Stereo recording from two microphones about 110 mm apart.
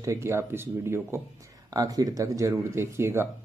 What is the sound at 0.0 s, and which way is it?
Speech, 25° right (ahead or behind).